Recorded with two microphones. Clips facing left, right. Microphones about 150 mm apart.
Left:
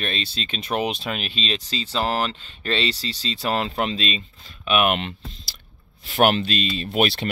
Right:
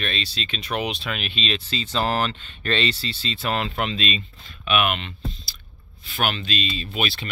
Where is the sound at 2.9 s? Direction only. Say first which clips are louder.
Left 1 dB; 35° left (ahead or behind).